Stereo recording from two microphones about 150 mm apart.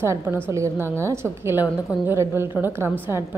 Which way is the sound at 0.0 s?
15° right (ahead or behind).